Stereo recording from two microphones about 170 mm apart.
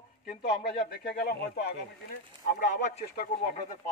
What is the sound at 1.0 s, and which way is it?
Speech, 65° left (ahead or behind).